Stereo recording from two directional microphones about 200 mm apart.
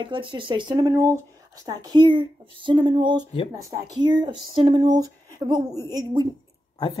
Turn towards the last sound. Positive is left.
turn(degrees=25)  # may be behind; listen again after turning